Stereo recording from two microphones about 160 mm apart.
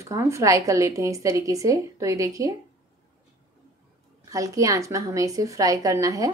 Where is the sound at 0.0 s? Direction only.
20° right (ahead or behind).